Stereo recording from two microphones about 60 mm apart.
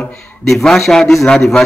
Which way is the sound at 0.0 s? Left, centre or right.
Centre.